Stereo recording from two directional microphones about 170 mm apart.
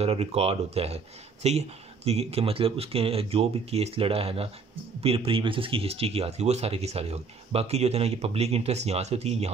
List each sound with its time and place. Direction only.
0.0 s speech: 35° right (ahead or behind)